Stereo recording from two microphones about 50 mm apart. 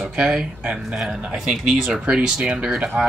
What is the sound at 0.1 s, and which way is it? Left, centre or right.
Speech, centre.